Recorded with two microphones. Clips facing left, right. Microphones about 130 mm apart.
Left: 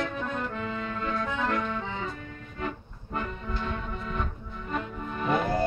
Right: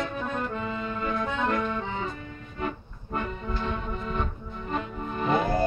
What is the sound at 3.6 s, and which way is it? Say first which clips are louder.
Music: right 2 dB; 25° right (ahead or behind).